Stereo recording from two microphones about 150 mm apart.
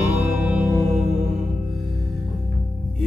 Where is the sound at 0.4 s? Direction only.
10° right (ahead or behind).